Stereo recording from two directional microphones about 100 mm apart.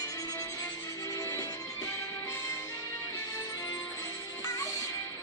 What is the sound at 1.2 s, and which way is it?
Music, 35° left (ahead or behind).